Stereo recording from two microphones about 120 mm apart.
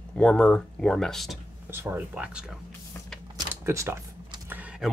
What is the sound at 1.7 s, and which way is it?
Speech, 20° right (ahead or behind).